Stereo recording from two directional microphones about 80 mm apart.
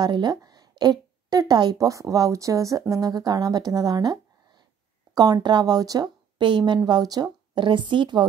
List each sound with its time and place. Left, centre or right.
0.0 s a woman's voice: right
7.5 s speech: right